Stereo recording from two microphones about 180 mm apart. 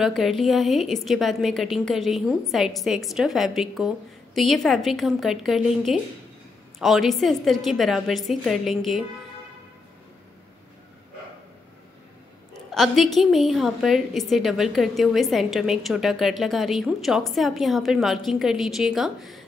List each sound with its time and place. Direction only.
0.0 s a woman's voice: centre (ahead or behind)
12.7 s a woman's voice: centre (ahead or behind)